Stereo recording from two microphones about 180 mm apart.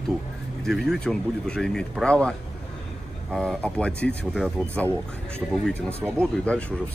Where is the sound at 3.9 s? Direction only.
65° left (ahead or behind).